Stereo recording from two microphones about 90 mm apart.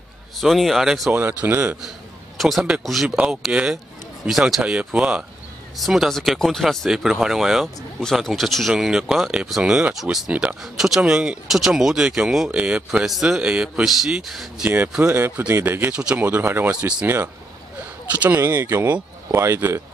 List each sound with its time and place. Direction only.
0.4 s speech: centre (ahead or behind)
1.1 s speech: 20° right (ahead or behind)
1.8 s a sound: centre (ahead or behind)
2.8 s speech: centre (ahead or behind)
14.6 s speech: 20° right (ahead or behind)
14.9 s speech: 10° right (ahead or behind)
15.1 s speech: 20° right (ahead or behind)